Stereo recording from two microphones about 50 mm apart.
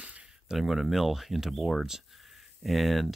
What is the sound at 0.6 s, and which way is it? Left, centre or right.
Speech, centre.